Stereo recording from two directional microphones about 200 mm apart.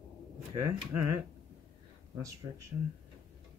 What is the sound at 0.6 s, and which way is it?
Speech, 15° right (ahead or behind).